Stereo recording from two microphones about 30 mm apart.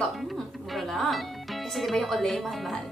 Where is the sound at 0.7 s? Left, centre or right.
Centre.